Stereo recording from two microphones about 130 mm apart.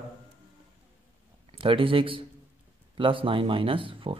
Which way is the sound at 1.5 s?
45° right (ahead or behind).